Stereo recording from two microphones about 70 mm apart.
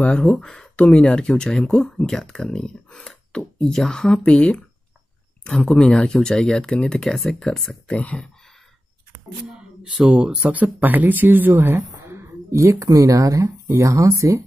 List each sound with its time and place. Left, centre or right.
0.2 s speech: centre
9.4 s speech: centre; by 12.7 s right
12.7 s speech: right